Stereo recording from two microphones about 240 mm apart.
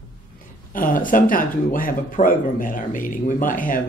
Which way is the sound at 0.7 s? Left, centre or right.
Left.